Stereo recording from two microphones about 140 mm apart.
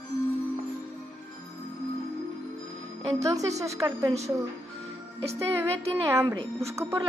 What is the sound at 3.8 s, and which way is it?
Speech, 20° right (ahead or behind).